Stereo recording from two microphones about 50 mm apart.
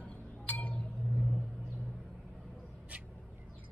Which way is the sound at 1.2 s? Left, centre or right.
Centre.